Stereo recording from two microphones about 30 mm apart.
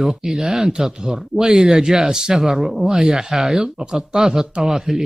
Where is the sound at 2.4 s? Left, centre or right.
Centre.